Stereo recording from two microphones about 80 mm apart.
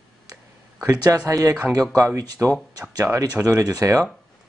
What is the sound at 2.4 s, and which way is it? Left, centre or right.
Speech, centre.